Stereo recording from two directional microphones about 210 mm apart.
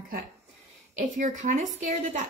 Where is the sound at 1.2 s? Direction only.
35° right (ahead or behind).